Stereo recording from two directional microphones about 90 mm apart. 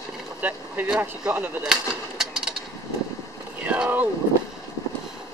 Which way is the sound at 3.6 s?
15° right (ahead or behind).